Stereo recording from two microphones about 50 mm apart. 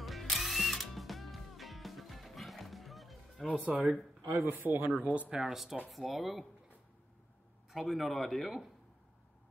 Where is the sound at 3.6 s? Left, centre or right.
Right.